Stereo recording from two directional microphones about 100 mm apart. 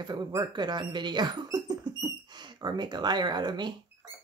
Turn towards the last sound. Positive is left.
turn(degrees=-50)  # may be behind; listen again after turning